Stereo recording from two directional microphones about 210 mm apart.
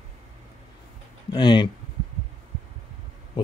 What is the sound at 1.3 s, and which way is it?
Speech, 20° left (ahead or behind).